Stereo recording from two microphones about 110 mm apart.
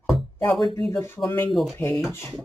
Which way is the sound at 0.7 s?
55° right (ahead or behind).